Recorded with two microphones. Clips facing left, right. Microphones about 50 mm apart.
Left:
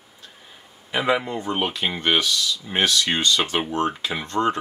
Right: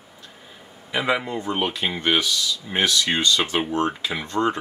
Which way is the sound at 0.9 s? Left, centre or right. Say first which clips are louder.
Left 1 dB; centre.